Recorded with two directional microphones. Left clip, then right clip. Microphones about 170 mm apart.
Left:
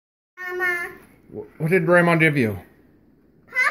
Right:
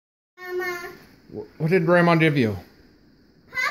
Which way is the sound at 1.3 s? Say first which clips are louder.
Left 1 dB; centre (ahead or behind).